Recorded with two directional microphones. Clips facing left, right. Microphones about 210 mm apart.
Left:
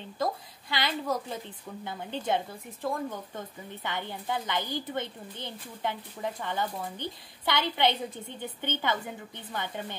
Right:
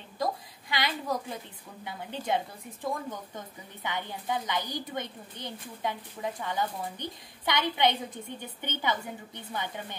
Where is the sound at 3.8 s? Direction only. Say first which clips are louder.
Right 1 dB; 15° right (ahead or behind).